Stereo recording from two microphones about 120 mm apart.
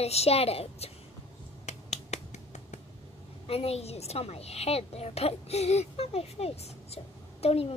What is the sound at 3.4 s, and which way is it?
A child's voice, 55° left (ahead or behind).